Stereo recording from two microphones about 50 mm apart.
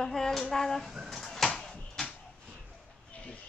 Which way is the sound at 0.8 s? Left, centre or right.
Centre.